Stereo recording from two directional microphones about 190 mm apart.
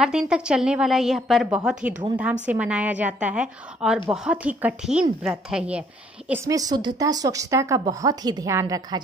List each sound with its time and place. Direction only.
0.0 s a woman's voice: 5° right (ahead or behind)